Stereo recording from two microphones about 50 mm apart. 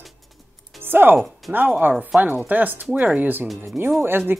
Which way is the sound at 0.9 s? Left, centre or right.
Right.